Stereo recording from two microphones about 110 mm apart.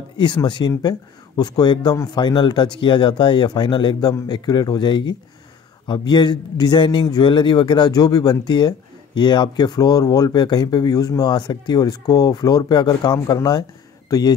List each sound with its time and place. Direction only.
0.2 s a man's voice: 45° left (ahead or behind)